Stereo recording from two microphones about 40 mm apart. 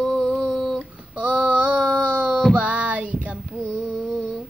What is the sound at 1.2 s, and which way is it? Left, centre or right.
Female singing, right.